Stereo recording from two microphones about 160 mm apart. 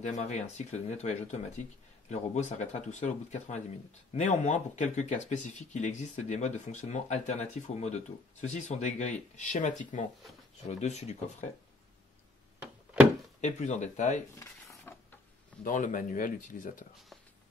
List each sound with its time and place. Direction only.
0.0 s speech: 45° left (ahead or behind)
13.4 s speech: 50° left (ahead or behind)
14.4 s a sound: 15° left (ahead or behind)
15.6 s speech: 55° left (ahead or behind)